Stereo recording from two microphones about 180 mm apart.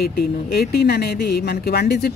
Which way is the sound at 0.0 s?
60° left (ahead or behind).